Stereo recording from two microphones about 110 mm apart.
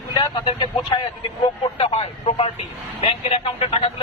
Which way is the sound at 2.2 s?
50° left (ahead or behind).